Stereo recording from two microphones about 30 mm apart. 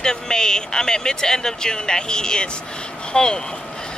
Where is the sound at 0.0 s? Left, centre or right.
Left.